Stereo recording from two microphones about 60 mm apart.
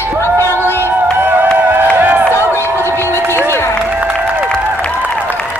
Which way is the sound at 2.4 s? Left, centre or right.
Left.